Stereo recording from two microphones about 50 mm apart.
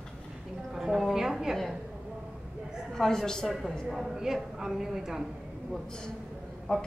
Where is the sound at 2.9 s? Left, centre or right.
Centre.